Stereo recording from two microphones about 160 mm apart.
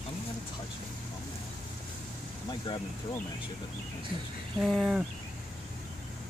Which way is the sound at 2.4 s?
30° left (ahead or behind).